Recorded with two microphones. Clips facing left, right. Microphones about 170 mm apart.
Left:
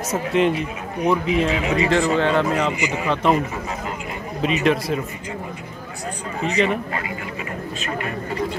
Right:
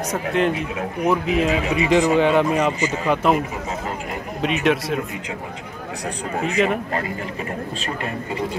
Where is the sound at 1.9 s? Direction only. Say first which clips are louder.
Right 5 dB; 15° right (ahead or behind).